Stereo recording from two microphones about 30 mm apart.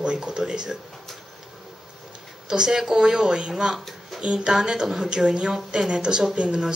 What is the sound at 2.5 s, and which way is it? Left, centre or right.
Speech, centre.